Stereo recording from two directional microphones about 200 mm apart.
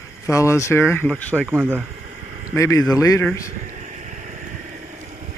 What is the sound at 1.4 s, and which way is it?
Speech, 5° right (ahead or behind).